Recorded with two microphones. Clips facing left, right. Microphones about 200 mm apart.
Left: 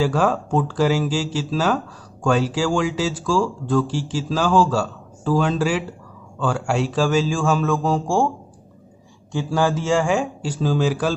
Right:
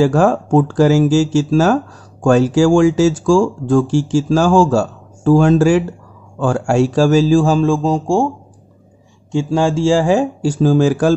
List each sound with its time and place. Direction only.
0.0 s a man's voice: 45° right (ahead or behind); by 8.3 s 20° right (ahead or behind)
9.3 s a man's voice: 25° right (ahead or behind); by 11.1 s 45° right (ahead or behind)